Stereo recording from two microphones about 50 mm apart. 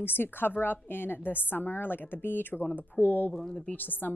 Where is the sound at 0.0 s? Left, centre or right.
Left.